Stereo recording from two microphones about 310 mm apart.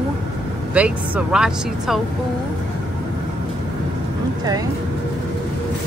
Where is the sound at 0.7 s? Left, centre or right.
Centre.